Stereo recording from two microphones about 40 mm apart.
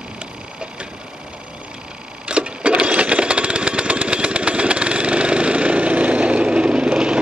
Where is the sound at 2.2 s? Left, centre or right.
Right.